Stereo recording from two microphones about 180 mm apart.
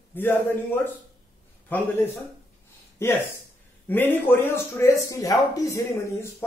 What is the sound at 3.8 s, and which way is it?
Speech, 10° left (ahead or behind).